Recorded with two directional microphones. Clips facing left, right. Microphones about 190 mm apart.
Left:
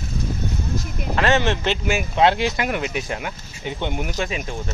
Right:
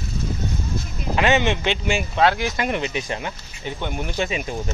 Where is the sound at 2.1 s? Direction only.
25° left (ahead or behind).